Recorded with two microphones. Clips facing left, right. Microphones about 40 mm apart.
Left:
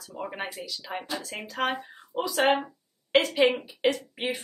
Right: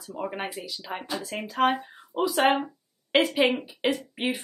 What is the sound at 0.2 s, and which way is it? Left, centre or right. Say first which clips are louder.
Speech: right 2 dB; centre.